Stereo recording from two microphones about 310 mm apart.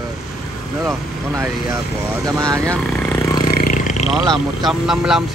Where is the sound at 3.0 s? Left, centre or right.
Centre.